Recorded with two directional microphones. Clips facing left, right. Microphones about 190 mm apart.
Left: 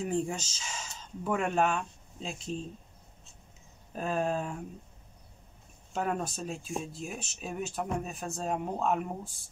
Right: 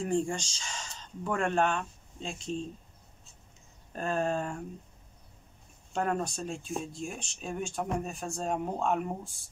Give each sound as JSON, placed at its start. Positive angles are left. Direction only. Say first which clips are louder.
{"t": 0.0, "sound": "speech", "louder": "right 2 dB", "side_deg": 5}
{"t": 3.9, "sound": "speech", "louder": "even", "side_deg": 5}
{"t": 5.9, "sound": "speech", "louder": "right 1 dB", "side_deg": 5}